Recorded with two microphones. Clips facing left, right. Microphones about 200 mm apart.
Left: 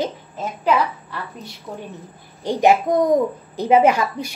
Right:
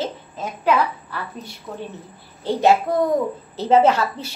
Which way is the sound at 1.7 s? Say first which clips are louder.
Even; 15° left (ahead or behind).